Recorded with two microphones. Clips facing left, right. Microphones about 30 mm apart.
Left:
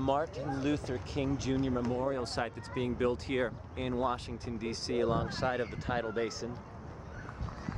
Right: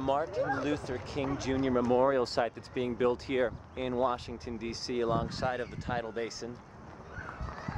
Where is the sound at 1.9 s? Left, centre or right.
Right.